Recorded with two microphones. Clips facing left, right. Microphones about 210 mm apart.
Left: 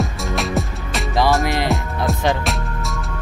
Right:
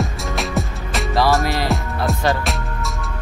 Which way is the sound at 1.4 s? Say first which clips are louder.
Left 1 dB; 15° left (ahead or behind).